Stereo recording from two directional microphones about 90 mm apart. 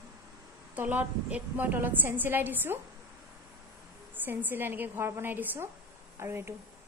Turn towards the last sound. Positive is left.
turn(degrees=-30)  # may be behind; listen again after turning